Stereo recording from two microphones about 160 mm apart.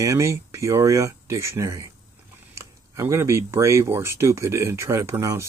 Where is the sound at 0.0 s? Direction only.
20° right (ahead or behind).